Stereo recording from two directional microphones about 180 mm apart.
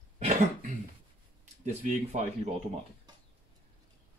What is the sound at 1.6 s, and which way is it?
Speech, 40° right (ahead or behind).